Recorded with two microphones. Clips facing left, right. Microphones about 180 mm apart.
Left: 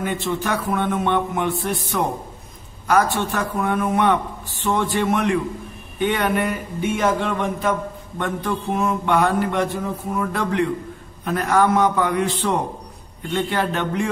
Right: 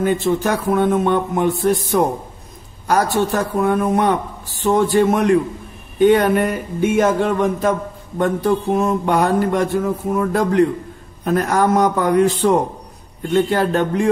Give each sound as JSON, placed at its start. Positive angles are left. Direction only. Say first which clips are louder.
{"t": 0.0, "sound": "a man's voice", "louder": "right 7 dB", "side_deg": -40}